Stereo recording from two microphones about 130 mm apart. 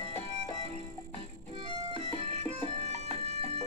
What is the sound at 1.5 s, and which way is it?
Music, 55° right (ahead or behind).